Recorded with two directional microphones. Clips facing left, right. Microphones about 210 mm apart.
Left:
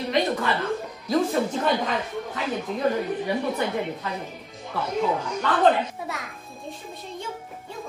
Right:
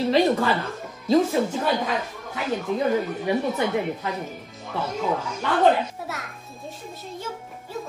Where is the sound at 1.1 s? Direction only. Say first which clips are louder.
Right 4 dB; 25° right (ahead or behind).